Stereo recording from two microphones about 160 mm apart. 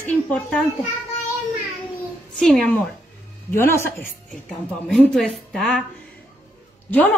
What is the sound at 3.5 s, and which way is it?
Speech, 15° left (ahead or behind).